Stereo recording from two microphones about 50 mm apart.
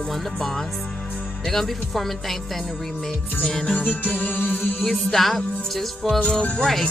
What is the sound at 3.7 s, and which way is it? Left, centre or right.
Music, left.